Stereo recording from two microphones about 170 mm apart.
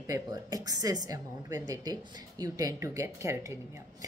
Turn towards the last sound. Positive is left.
turn(degrees=-15)  # may be behind; listen again after turning